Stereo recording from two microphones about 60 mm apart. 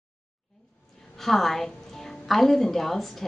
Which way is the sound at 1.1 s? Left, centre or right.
Centre.